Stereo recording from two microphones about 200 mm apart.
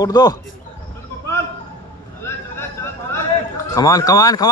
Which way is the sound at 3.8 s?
15° left (ahead or behind).